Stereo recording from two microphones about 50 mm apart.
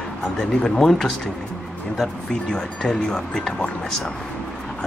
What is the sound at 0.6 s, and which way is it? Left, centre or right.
Speech, centre.